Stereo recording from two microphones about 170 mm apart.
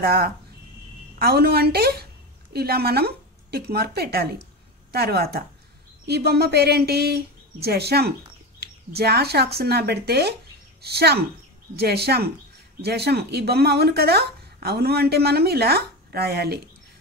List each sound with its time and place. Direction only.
0.0 s speech: 65° right (ahead or behind)